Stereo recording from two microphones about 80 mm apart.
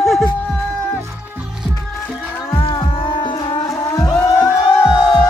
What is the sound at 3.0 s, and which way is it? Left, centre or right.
Music, left.